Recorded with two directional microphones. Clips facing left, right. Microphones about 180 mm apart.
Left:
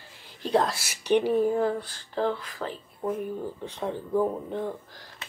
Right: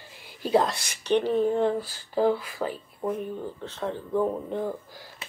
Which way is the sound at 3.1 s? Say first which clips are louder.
Left 1 dB; 10° left (ahead or behind).